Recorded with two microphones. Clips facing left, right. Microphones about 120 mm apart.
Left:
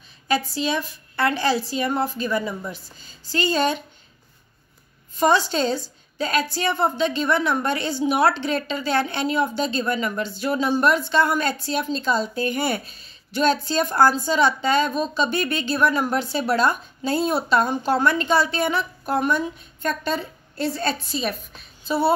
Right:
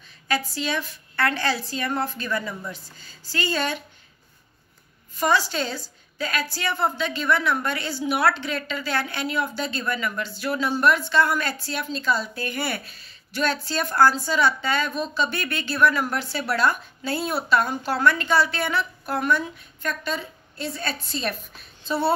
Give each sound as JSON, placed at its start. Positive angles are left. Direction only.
{"t": 0.6, "sound": "speech", "side_deg": 15}
{"t": 5.1, "sound": "a woman's voice", "side_deg": 25}
{"t": 21.1, "sound": "a woman's voice", "side_deg": 5}